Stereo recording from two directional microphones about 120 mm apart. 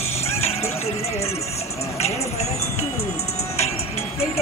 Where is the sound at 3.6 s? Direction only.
60° left (ahead or behind).